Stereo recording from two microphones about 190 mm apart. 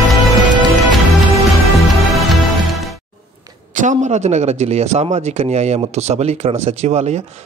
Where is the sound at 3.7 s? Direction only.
40° right (ahead or behind).